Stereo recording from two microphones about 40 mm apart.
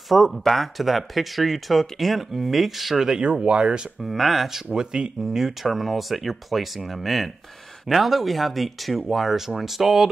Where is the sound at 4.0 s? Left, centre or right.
Centre.